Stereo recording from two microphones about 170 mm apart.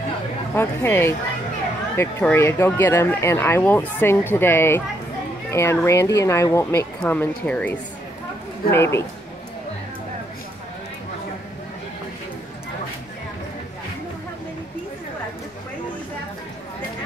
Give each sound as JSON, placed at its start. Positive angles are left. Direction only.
{"t": 0.6, "sound": "speech", "side_deg": 15}